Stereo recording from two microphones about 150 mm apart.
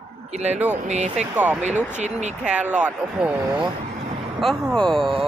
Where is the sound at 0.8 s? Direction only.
50° right (ahead or behind).